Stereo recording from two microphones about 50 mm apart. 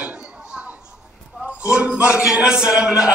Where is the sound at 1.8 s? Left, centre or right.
Right.